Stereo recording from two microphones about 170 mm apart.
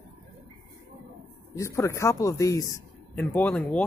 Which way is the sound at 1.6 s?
15° left (ahead or behind).